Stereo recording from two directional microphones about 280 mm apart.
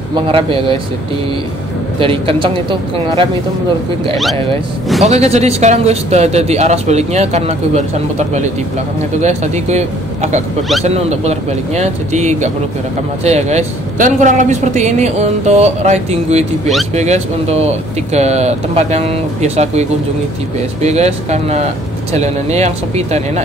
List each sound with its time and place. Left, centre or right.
0.1 s a man's voice: centre
2.0 s a man's voice: centre
5.0 s a man's voice: right